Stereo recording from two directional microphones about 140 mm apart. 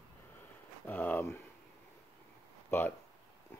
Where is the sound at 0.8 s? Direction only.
15° left (ahead or behind).